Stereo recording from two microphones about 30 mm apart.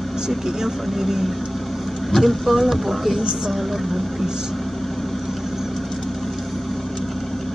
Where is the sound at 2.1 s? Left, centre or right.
Centre.